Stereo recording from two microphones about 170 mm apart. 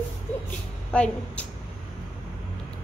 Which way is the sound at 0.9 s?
5° left (ahead or behind).